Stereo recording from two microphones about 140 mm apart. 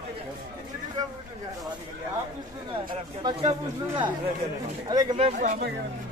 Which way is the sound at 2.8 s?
35° right (ahead or behind).